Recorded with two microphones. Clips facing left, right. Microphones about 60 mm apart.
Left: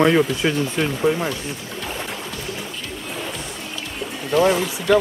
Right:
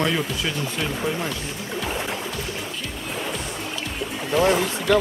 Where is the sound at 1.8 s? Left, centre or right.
Centre.